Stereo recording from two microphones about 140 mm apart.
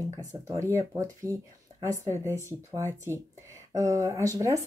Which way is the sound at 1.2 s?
20° right (ahead or behind).